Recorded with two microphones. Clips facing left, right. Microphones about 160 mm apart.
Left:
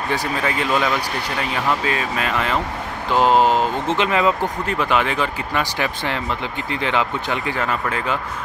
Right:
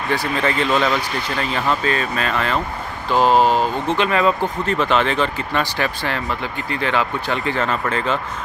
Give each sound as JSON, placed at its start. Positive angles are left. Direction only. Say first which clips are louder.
{"t": 0.1, "sound": "speech", "louder": "right 3 dB", "side_deg": 10}